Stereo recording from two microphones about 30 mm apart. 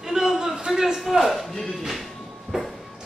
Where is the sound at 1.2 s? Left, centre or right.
Centre.